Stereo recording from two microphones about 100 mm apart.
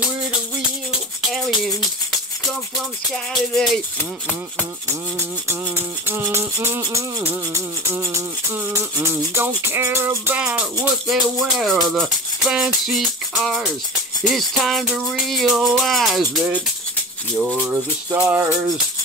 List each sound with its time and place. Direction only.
3.1 s music: 5° left (ahead or behind)
6.0 s music: 20° right (ahead or behind)
11.1 s music: centre (ahead or behind)
17.6 s music: 15° right (ahead or behind)